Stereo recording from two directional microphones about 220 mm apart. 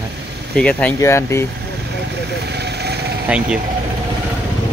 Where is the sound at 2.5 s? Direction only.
50° right (ahead or behind).